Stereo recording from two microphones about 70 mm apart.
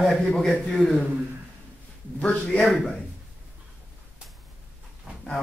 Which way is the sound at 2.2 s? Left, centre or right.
Centre.